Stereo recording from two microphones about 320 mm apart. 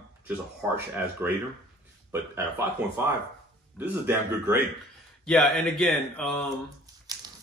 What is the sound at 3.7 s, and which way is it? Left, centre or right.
Speech, centre.